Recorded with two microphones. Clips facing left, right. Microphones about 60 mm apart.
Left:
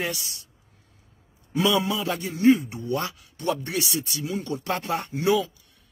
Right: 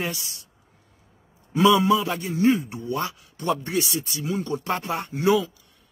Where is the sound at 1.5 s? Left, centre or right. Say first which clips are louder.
Right 5 dB; right.